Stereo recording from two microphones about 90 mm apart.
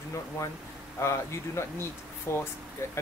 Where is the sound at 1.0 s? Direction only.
30° left (ahead or behind).